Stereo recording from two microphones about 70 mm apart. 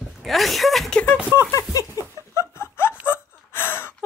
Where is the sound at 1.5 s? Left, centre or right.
Left.